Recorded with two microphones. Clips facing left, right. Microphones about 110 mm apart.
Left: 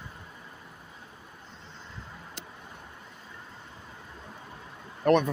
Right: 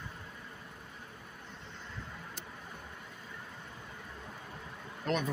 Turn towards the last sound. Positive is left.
turn(degrees=60)  # may be behind; listen again after turning